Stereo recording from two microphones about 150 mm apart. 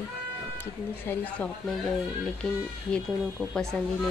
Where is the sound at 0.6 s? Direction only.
15° left (ahead or behind).